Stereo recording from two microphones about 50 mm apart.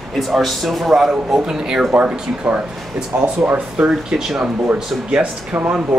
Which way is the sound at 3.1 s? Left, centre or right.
Right.